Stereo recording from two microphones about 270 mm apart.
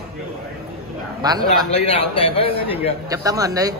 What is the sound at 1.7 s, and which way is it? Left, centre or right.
Speech, left.